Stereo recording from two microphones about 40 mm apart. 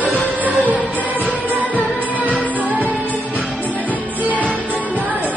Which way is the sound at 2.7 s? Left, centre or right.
Right.